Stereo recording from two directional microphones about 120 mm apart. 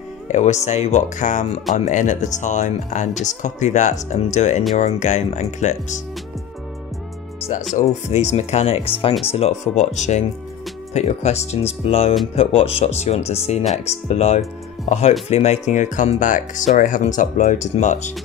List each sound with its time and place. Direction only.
0.3 s speech: 70° left (ahead or behind)
7.7 s speech: 65° left (ahead or behind)